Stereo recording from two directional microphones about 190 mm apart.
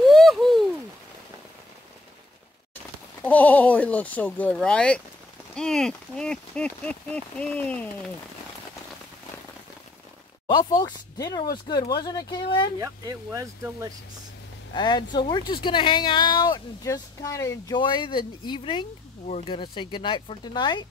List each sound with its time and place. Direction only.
0.0 s a sound: centre (ahead or behind)
3.2 s speech: 10° left (ahead or behind)
10.5 s speech: 20° left (ahead or behind)
12.8 s speech: 15° right (ahead or behind)
14.7 s speech: 25° left (ahead or behind)